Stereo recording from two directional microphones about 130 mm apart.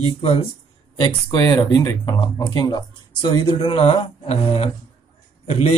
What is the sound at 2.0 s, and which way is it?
Speech, 35° left (ahead or behind).